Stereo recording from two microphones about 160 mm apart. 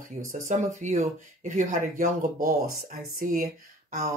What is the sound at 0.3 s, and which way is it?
Speech, 50° right (ahead or behind).